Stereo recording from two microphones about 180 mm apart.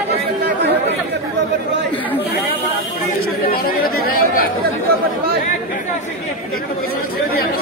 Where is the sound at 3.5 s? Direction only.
55° left (ahead or behind).